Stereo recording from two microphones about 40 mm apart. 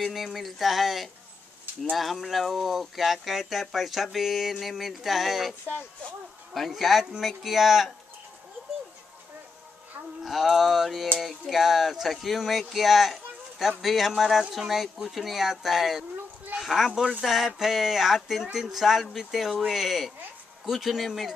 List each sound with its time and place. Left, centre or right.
0.0 s speech: centre
10.2 s a child's voice: centre